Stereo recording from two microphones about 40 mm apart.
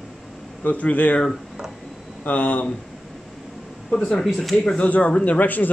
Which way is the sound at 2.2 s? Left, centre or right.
Left.